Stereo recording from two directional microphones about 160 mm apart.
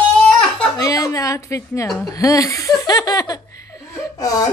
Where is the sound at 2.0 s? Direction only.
20° left (ahead or behind).